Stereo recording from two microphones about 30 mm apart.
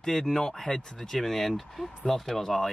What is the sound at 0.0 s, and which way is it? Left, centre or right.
Speech, centre.